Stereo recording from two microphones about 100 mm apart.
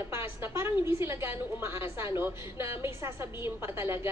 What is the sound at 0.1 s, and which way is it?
A woman's voice, 25° right (ahead or behind).